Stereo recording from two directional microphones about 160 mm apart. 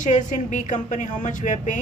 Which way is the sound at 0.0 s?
50° left (ahead or behind).